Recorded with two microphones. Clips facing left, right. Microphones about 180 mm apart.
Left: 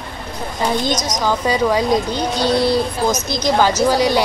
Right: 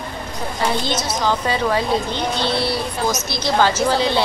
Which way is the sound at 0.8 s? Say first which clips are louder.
Left 2 dB; 15° left (ahead or behind).